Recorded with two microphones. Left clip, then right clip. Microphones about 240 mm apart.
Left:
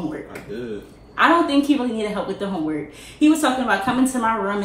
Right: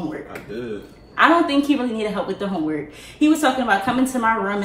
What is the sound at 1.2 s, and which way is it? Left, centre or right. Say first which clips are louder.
A woman's voice: right 1 dB; centre.